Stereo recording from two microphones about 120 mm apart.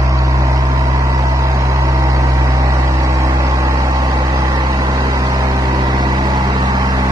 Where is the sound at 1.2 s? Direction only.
25° right (ahead or behind).